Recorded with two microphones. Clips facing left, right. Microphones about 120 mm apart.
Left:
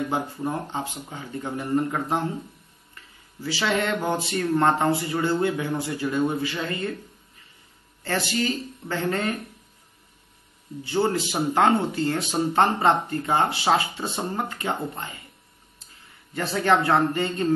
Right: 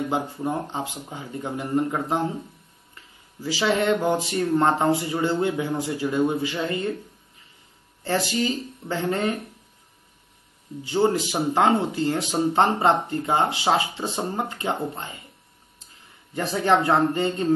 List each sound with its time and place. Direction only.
0.8 s speech: 15° right (ahead or behind)
3.4 s speech: 15° right (ahead or behind)
8.0 s speech: 15° right (ahead or behind)
10.9 s speech: 15° right (ahead or behind)
16.3 s speech: 20° right (ahead or behind)